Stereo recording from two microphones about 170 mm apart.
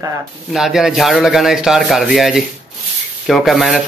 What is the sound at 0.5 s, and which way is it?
Speech, centre (ahead or behind).